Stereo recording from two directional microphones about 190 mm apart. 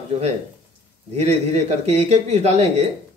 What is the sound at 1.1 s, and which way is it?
A man's voice, 35° right (ahead or behind).